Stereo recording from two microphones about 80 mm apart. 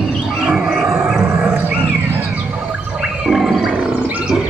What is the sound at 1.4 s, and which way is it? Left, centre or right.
Dog, centre.